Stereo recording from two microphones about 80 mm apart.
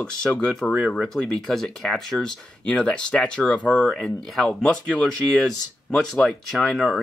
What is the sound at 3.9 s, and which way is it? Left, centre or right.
Speech, centre.